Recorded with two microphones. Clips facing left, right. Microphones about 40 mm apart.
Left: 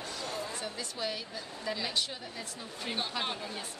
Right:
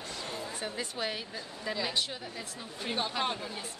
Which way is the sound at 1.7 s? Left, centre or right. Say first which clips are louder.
Right 1 dB; centre.